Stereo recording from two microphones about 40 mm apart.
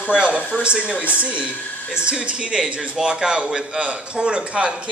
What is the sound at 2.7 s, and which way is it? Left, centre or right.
A man's voice, centre.